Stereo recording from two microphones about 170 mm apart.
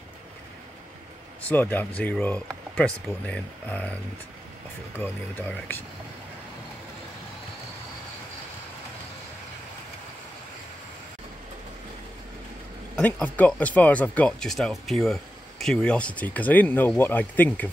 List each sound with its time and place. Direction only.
1.5 s speech: 10° left (ahead or behind)
4.9 s speech: 10° left (ahead or behind)
12.9 s speech: 10° left (ahead or behind)